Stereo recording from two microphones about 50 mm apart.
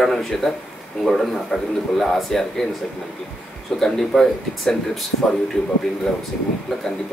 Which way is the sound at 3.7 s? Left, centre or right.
Centre.